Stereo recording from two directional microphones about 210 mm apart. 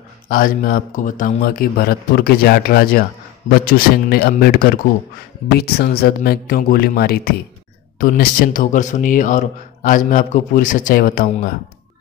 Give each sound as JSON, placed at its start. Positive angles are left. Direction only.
{"t": 0.3, "sound": "speech", "side_deg": 40}